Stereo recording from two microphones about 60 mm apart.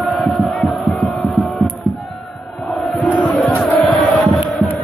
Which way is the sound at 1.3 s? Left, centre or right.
Centre.